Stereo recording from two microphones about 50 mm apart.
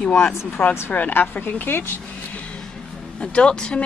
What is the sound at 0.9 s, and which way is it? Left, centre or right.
Speech, left.